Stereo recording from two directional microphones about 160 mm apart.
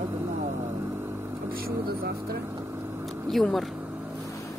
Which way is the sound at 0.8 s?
15° right (ahead or behind).